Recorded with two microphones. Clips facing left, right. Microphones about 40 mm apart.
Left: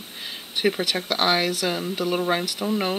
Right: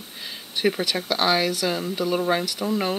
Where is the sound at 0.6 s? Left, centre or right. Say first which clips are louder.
Even; centre.